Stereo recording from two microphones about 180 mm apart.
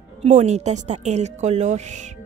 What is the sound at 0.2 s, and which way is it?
A woman's voice, 40° right (ahead or behind).